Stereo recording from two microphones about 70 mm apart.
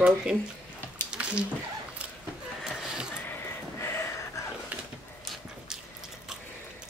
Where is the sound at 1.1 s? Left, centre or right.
Centre.